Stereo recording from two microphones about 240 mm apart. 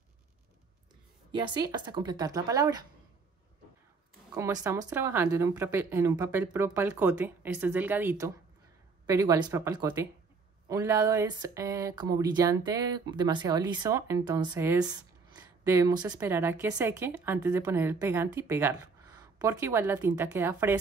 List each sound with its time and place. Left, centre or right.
1.3 s speech: centre
4.4 s speech: centre